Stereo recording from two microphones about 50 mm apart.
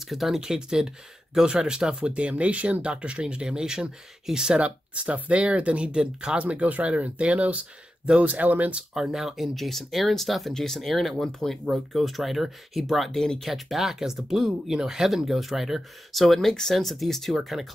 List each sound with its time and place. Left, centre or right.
0.0 s speech: centre
4.6 s speech: right
6.4 s speech: right
8.9 s speech: centre